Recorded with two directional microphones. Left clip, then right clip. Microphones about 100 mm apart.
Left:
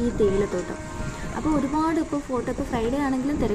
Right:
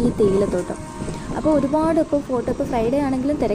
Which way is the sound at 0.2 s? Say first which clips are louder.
Right 4 dB; 30° right (ahead or behind).